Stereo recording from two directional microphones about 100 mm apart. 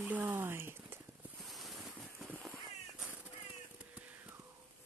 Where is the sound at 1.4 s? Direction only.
Centre (ahead or behind).